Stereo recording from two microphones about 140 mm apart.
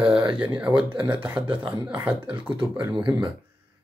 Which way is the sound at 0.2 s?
35° right (ahead or behind).